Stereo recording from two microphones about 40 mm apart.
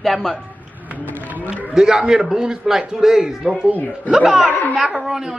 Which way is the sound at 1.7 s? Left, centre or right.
Centre.